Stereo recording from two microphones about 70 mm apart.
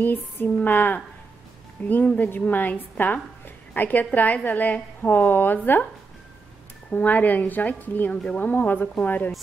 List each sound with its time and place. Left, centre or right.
0.0 s a woman's voice: left
6.9 s a woman's voice: left